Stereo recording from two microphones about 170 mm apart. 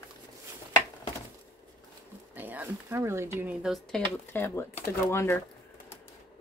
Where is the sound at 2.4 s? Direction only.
10° right (ahead or behind); by 5.3 s 15° left (ahead or behind).